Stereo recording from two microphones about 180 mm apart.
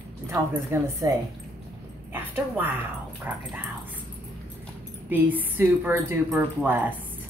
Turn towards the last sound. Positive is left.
turn(degrees=-10)  # may be behind; listen again after turning